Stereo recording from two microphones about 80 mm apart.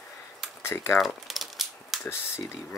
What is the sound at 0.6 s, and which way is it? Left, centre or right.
Speech, left.